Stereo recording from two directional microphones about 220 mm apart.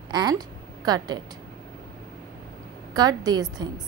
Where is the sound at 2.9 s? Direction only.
20° right (ahead or behind).